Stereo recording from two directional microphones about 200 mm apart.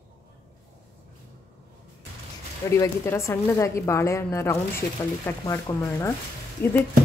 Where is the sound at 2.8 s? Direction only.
15° left (ahead or behind).